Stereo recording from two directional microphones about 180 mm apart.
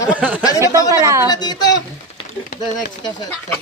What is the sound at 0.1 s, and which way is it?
Speech, 10° right (ahead or behind).